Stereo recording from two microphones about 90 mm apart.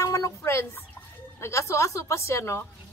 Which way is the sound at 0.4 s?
30° left (ahead or behind).